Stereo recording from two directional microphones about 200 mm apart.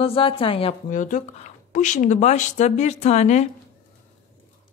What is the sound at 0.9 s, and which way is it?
Speech, 40° left (ahead or behind).